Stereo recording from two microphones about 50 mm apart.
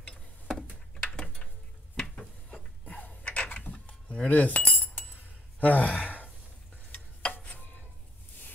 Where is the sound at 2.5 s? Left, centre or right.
Left.